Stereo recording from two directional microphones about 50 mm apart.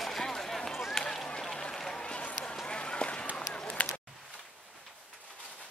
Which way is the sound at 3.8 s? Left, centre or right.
Left.